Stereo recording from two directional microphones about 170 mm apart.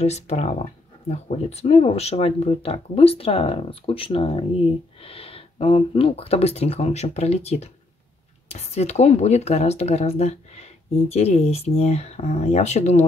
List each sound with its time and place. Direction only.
0.0 s speech: 40° left (ahead or behind)